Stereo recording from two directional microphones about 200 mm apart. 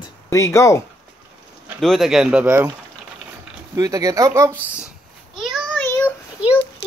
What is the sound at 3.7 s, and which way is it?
Speech, 15° right (ahead or behind).